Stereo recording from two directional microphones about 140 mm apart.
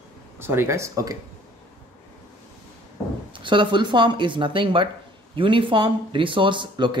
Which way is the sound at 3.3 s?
35° right (ahead or behind).